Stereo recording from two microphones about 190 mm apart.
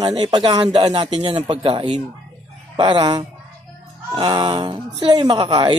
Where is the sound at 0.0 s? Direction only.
30° right (ahead or behind).